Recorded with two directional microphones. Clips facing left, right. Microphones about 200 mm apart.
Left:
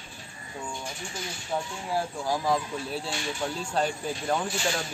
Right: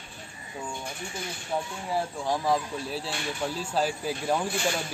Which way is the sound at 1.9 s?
Centre (ahead or behind).